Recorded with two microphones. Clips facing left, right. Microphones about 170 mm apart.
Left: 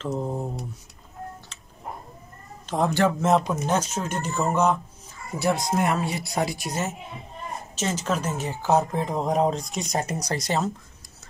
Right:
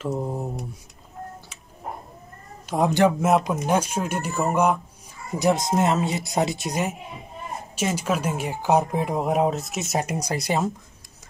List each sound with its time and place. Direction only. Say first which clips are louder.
0.0 s speech: right 1 dB; 5° right (ahead or behind)
1.5 s music: right 1 dB; 10° right (ahead or behind)
2.7 s speech: right 3 dB; 15° right (ahead or behind)